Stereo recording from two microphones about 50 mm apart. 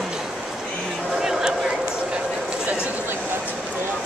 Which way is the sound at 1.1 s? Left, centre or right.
Centre.